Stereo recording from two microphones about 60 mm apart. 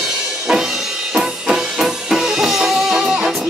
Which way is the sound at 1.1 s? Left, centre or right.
Centre.